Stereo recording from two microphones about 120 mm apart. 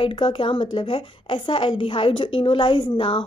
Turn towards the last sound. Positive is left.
turn(degrees=45)  # may be behind; listen again after turning